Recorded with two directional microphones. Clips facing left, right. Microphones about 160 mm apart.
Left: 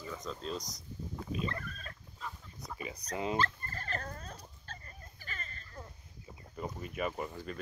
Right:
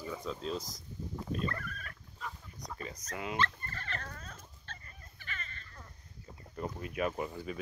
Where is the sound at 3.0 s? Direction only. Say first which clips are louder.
Left 2 dB; 30° left (ahead or behind).